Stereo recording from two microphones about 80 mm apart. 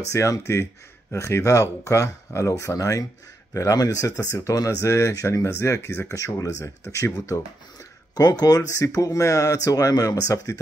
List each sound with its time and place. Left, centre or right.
0.1 s speech: left
8.1 s speech: left